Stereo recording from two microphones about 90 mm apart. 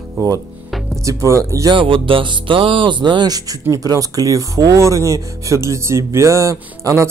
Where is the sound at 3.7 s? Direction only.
40° right (ahead or behind).